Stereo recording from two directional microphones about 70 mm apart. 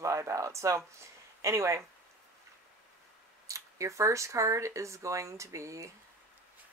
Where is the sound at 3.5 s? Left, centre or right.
Right.